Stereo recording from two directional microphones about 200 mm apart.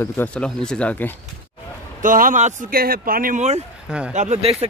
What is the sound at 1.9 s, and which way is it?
Speech, 40° right (ahead or behind).